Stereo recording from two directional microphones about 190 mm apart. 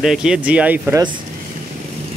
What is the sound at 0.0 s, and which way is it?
Speech, 5° right (ahead or behind).